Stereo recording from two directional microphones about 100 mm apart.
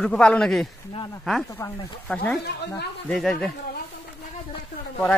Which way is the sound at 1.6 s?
30° left (ahead or behind).